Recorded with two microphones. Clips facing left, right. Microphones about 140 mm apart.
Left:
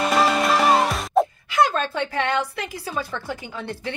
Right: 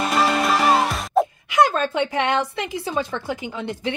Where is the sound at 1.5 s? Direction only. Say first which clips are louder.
Right 4 dB; 15° right (ahead or behind).